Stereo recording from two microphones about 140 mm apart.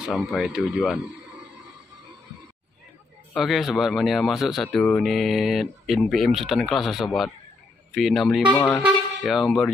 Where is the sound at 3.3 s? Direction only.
Centre (ahead or behind).